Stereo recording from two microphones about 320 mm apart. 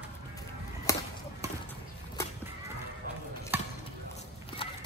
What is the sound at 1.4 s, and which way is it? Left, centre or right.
Basketball bounce, centre.